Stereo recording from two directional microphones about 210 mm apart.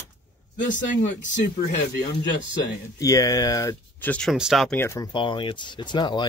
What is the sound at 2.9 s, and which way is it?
Speech, 15° left (ahead or behind).